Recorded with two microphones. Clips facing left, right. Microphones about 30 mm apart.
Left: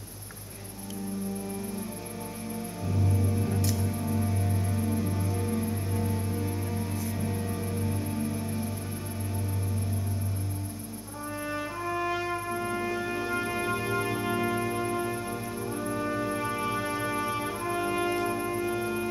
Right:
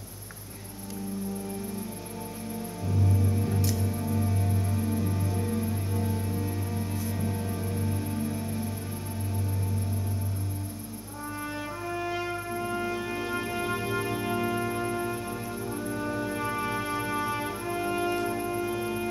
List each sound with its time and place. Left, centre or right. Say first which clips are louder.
2.9 s music: right 1 dB; centre
11.8 s music: left 2 dB; centre